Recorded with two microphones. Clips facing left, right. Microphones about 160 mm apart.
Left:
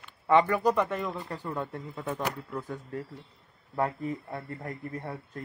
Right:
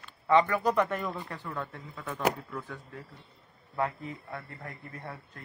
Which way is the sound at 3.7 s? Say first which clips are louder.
Left 3 dB; 35° left (ahead or behind).